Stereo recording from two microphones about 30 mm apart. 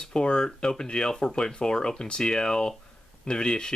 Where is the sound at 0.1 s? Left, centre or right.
Left.